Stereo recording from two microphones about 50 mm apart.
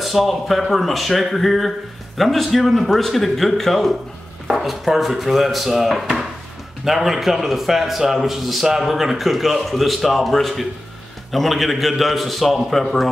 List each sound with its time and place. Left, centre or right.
0.0 s a man's voice: centre